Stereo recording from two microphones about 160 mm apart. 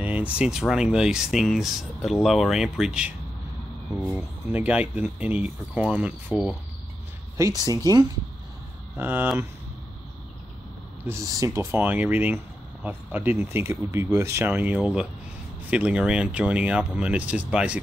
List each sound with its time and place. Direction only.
0.0 s speech: 10° right (ahead or behind)
7.3 s speech: 20° right (ahead or behind)
8.9 s speech: 10° right (ahead or behind)
11.1 s speech: 20° right (ahead or behind)